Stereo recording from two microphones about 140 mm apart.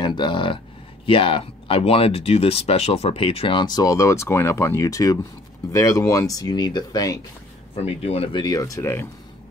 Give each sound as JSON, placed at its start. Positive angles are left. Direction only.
{"t": 0.0, "sound": "speech", "side_deg": 35}
{"t": 7.7, "sound": "speech", "side_deg": 45}
{"t": 8.4, "sound": "speech", "side_deg": 30}